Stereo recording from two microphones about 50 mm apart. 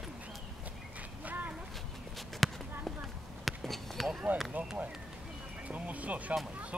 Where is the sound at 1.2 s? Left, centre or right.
Right.